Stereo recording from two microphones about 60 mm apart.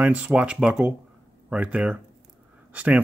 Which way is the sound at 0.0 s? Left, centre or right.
Right.